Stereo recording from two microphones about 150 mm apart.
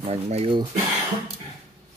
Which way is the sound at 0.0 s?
40° right (ahead or behind).